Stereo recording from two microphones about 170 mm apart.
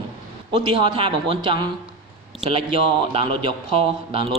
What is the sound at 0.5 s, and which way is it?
A man's voice, 25° right (ahead or behind).